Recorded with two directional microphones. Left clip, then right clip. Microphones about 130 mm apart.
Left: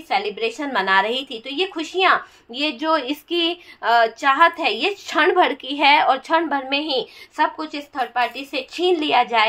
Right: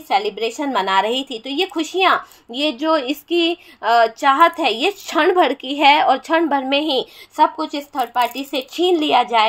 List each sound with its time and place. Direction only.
0.1 s a woman's voice: 40° right (ahead or behind)